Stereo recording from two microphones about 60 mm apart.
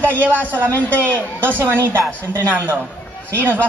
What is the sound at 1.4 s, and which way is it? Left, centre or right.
A woman's voice, right.